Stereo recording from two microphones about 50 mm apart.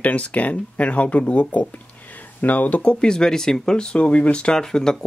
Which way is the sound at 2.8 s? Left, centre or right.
Centre.